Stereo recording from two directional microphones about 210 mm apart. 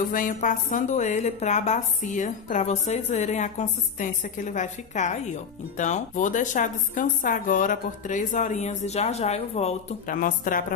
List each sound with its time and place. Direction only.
0.1 s a woman's voice: 40° left (ahead or behind)